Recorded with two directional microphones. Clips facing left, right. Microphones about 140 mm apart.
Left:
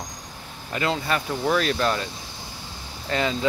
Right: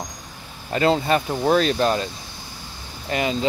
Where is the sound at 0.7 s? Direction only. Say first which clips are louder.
Right 6 dB; 30° right (ahead or behind).